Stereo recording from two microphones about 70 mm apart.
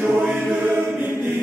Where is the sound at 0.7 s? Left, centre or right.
Right.